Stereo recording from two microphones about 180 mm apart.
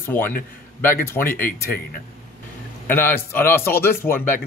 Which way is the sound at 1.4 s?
55° left (ahead or behind).